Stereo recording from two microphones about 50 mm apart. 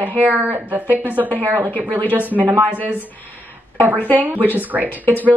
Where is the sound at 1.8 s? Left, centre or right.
Left.